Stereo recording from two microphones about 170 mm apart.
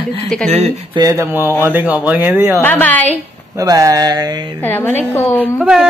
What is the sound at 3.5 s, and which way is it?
Speech, 20° right (ahead or behind).